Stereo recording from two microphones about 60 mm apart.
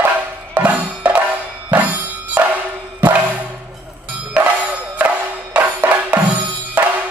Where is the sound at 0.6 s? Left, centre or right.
Right.